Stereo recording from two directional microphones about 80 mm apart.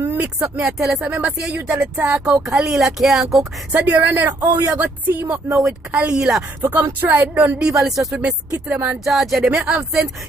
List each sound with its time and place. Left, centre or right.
0.2 s speech: centre
3.7 s speech: centre
5.5 s speech: centre
6.6 s speech: right
7.6 s speech: centre
8.2 s speech: centre
9.0 s speech: centre
9.5 s speech: centre